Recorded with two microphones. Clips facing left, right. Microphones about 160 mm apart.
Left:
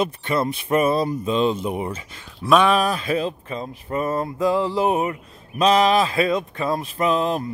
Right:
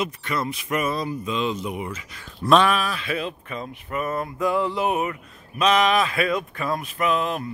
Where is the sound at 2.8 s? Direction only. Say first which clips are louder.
Left 6 dB; 40° left (ahead or behind).